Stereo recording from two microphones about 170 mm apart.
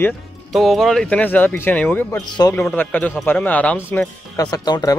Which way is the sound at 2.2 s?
25° left (ahead or behind).